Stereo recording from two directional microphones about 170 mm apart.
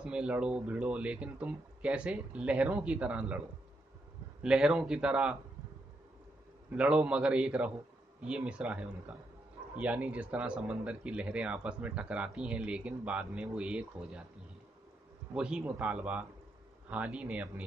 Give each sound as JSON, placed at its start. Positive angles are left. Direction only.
{"t": 0.0, "sound": "a man's voice", "side_deg": -5}
{"t": 6.7, "sound": "speech", "side_deg": -5}
{"t": 15.3, "sound": "speech", "side_deg": -5}